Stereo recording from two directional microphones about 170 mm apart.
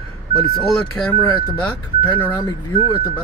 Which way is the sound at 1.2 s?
10° left (ahead or behind).